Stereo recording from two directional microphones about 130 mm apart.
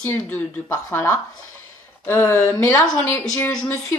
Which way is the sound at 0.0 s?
15° left (ahead or behind).